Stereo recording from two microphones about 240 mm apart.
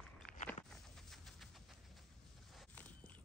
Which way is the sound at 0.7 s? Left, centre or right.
Centre.